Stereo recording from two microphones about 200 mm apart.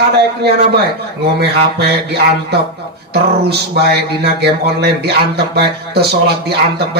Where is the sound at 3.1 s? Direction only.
55° right (ahead or behind).